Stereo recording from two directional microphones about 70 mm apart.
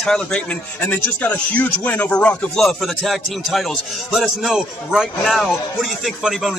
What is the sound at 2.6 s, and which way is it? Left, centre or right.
Speech, centre.